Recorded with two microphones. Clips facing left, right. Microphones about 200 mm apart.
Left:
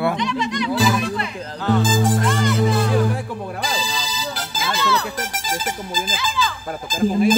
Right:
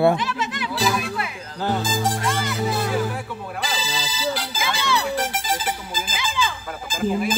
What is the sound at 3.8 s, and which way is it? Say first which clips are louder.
Music: right 1 dB; 5° right (ahead or behind).